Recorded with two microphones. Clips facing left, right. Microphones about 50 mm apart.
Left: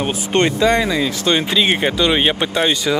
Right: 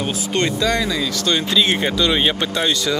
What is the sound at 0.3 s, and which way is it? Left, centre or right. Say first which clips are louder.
Speech: left 5 dB; left.